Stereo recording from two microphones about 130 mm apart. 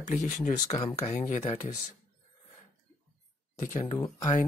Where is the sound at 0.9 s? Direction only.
60° left (ahead or behind); by 1.5 s 75° left (ahead or behind).